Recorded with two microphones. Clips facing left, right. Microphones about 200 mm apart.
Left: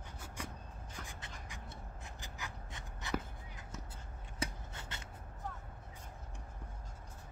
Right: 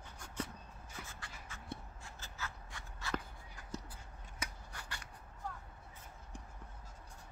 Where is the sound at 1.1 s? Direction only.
20° left (ahead or behind).